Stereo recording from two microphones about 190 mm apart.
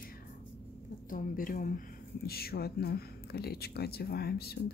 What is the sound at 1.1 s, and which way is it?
Speech, 45° left (ahead or behind).